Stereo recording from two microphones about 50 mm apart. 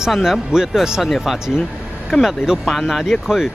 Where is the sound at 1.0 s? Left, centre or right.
Centre.